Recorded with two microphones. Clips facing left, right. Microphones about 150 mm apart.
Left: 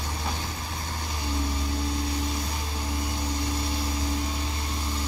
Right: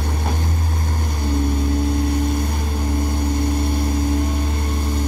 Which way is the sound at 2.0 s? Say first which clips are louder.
Right 9 dB; 55° right (ahead or behind).